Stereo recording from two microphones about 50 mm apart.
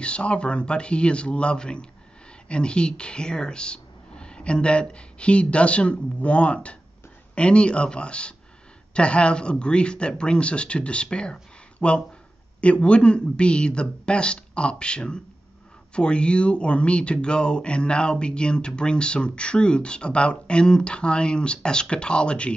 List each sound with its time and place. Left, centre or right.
0.0 s speech: left